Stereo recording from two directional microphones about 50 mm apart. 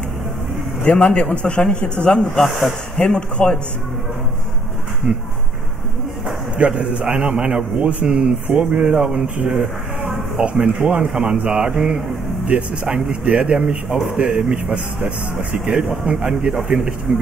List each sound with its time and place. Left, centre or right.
0.8 s a man's voice: left
2.2 s speech: centre
3.1 s a man's voice: left
5.1 s speech: centre
6.6 s speech: right
10.8 s speech: centre